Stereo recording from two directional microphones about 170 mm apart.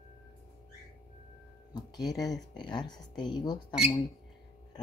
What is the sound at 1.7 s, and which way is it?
Speech, 25° left (ahead or behind).